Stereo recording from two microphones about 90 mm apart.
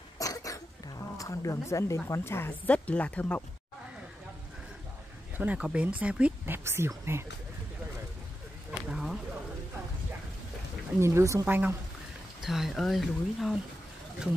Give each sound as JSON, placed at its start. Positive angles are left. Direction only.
{"t": 0.2, "sound": "cough", "side_deg": 40}
{"t": 1.1, "sound": "a woman's voice", "side_deg": 40}
{"t": 5.4, "sound": "speech", "side_deg": -15}
{"t": 6.5, "sound": "speech", "side_deg": -25}
{"t": 8.8, "sound": "a sound", "side_deg": -5}
{"t": 11.0, "sound": "speech", "side_deg": -30}
{"t": 11.4, "sound": "speech", "side_deg": -20}
{"t": 12.4, "sound": "speech", "side_deg": -5}
{"t": 14.2, "sound": "speech", "side_deg": -10}